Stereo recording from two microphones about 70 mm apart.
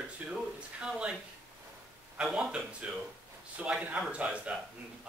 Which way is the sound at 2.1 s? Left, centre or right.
Centre.